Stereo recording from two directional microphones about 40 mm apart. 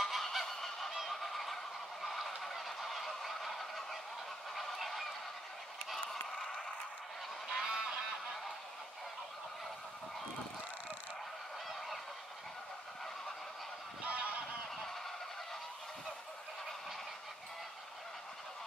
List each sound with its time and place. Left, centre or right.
0.0 s goose: centre
2.0 s fowl: centre
4.6 s goose: centre
7.6 s goose: centre
14.0 s goose: right